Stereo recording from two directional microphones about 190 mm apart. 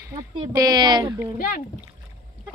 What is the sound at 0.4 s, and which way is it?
Speech, 20° right (ahead or behind).